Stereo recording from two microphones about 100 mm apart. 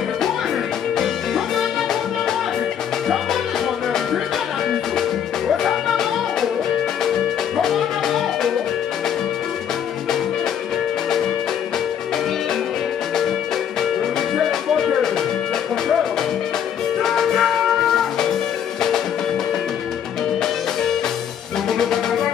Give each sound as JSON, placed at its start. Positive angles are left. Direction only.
{"t": 0.9, "sound": "music", "side_deg": 0}
{"t": 7.5, "sound": "music", "side_deg": 0}
{"t": 17.0, "sound": "music", "side_deg": 5}
{"t": 21.6, "sound": "music", "side_deg": 5}